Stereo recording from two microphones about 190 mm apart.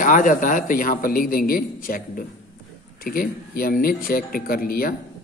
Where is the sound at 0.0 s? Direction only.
45° left (ahead or behind).